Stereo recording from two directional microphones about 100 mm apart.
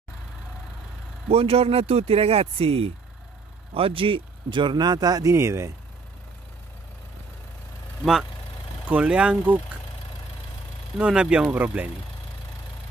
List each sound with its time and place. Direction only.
1.3 s speech: 85° right; by 5.3 s 40° right (ahead or behind)
5.3 s speech: 30° right (ahead or behind)
8.0 s speech: 5° right (ahead or behind)
11.0 s speech: 10° right (ahead or behind)